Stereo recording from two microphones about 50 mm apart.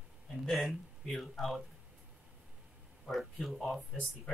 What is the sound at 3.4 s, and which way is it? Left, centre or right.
Speech, centre.